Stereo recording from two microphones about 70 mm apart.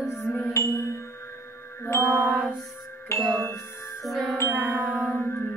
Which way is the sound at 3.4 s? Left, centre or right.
Left.